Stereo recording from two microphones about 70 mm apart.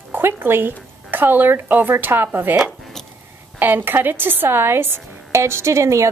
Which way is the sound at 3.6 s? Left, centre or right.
Right.